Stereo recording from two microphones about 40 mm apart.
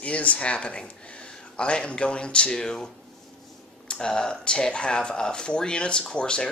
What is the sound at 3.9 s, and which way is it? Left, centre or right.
Speech, centre.